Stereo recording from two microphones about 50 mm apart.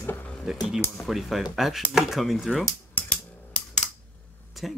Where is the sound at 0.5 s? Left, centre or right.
Centre.